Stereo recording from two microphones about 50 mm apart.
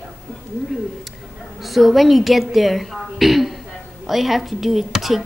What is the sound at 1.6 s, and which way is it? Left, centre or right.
A woman's voice, centre.